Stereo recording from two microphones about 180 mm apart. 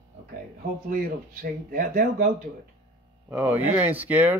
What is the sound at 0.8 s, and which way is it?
Speech, 55° right (ahead or behind).